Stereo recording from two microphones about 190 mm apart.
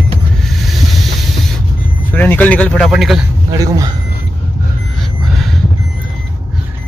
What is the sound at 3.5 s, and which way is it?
Speech, 20° right (ahead or behind).